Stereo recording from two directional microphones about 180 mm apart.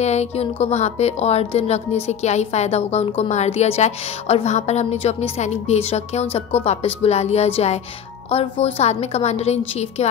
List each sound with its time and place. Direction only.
0.0 s speech: 35° left (ahead or behind)